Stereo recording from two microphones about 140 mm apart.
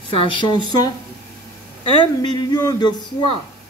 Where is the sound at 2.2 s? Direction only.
30° left (ahead or behind).